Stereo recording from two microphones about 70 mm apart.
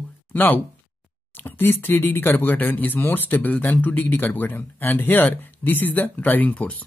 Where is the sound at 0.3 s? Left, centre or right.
Left.